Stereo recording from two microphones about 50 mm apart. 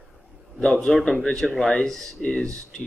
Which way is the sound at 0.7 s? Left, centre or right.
Centre.